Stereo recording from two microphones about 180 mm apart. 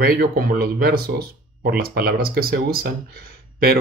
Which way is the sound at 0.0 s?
55° right (ahead or behind).